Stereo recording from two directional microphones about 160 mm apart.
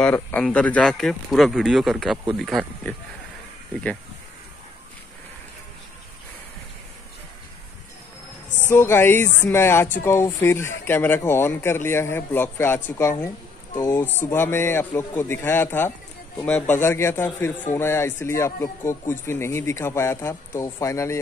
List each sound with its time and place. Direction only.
0.0 s speech: 10° left (ahead or behind)
8.5 s speech: 15° left (ahead or behind)